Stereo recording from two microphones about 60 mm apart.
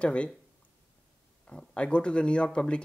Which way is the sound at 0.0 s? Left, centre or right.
Centre.